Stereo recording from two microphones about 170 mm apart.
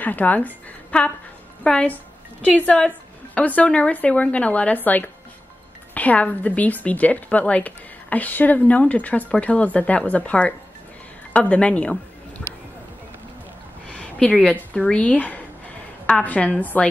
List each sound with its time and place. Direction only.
0.0 s a woman's voice: 10° left (ahead or behind)
13.8 s speech: 10° left (ahead or behind)